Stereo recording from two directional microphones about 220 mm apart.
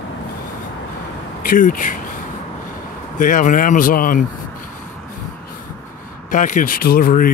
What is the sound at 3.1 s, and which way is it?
Speech, 35° left (ahead or behind).